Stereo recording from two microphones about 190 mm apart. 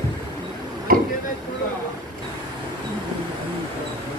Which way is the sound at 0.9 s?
50° right (ahead or behind).